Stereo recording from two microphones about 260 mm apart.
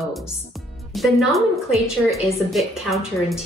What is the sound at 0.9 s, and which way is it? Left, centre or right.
A woman's voice, centre.